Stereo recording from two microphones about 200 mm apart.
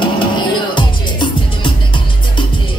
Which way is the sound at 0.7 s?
25° left (ahead or behind).